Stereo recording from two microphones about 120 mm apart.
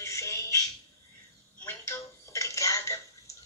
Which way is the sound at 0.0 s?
25° left (ahead or behind).